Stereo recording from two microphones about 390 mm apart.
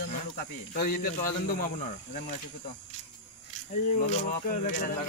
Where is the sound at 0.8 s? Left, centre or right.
Left.